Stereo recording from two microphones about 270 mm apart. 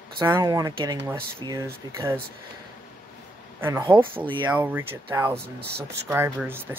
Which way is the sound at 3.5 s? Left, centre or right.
Centre.